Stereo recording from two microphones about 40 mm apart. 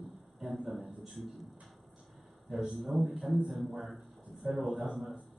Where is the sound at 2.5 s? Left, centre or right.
Centre.